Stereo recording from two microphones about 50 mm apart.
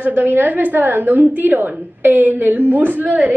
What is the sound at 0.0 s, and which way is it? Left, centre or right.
A woman's voice, right.